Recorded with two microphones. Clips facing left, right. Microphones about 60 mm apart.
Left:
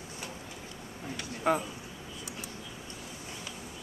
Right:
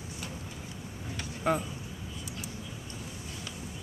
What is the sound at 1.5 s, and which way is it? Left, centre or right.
Speech, centre.